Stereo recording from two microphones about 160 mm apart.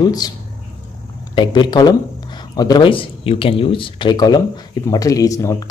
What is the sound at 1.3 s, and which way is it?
Speech, 30° left (ahead or behind).